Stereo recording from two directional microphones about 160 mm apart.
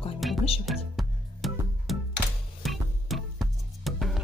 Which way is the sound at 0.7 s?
Centre (ahead or behind).